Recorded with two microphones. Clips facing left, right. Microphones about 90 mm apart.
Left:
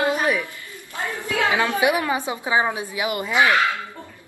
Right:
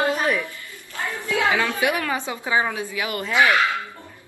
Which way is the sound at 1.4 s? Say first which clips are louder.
Left 3 dB; 20° left (ahead or behind).